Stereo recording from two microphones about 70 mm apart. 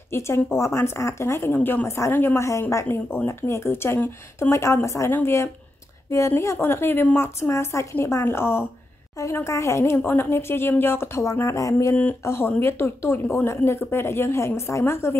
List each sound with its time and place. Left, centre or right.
0.1 s speech: left
1.5 s a woman's voice: left
2.7 s speech: left
11.9 s a woman's voice: left